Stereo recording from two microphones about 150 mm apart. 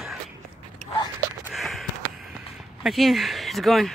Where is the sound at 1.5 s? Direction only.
Centre (ahead or behind).